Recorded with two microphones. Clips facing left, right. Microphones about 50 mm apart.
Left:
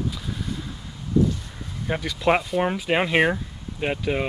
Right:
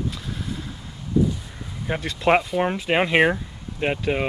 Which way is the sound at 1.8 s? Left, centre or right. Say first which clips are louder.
Right 1 dB; centre.